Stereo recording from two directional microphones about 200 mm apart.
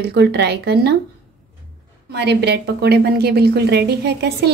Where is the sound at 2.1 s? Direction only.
55° right (ahead or behind).